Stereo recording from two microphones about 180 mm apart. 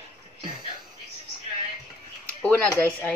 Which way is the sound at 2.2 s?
10° left (ahead or behind).